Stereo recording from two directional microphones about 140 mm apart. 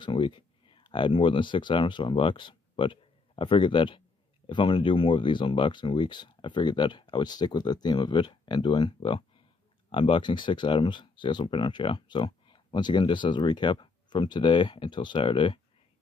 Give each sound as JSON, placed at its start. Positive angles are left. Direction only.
{"t": 0.0, "sound": "speech", "side_deg": 35}